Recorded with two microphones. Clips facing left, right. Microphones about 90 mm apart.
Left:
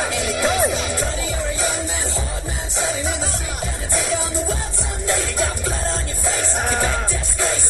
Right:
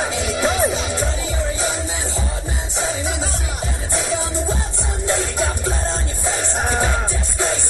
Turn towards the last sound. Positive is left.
turn(degrees=-15)  # may be behind; listen again after turning